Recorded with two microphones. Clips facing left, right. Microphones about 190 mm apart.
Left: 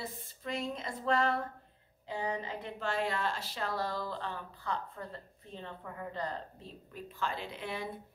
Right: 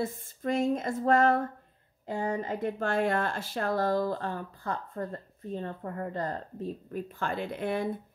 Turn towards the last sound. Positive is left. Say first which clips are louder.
# right 9 dB
turn(degrees=-50)  # may be behind; listen again after turning